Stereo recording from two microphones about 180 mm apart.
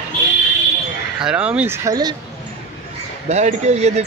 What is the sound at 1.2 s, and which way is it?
Speech, 5° right (ahead or behind).